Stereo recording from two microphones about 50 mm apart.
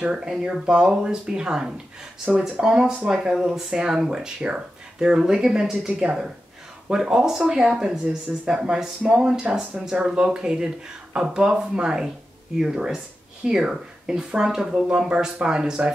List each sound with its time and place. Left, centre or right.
0.0 s speech: centre